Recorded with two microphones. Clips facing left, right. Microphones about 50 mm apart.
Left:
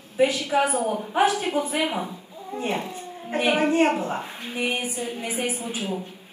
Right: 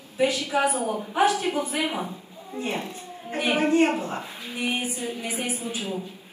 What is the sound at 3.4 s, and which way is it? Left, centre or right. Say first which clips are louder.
Speech: left 2 dB; left.